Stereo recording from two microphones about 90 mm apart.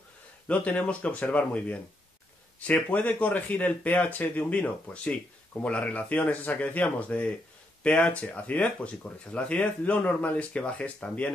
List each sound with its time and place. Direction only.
0.5 s speech: 15° left (ahead or behind)